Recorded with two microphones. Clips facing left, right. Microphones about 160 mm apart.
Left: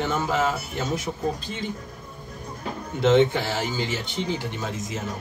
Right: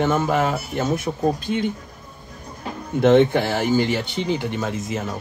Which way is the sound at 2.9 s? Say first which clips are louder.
Right 4 dB; 55° right (ahead or behind).